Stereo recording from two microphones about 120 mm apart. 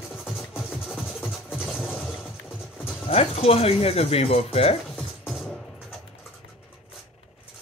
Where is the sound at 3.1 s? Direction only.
55° left (ahead or behind).